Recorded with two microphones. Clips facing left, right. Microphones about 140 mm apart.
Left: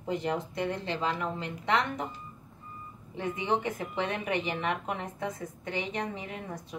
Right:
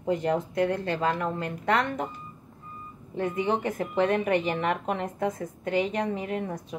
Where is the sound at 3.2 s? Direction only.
50° right (ahead or behind).